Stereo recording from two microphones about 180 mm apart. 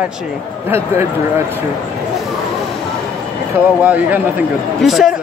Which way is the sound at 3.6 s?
10° right (ahead or behind).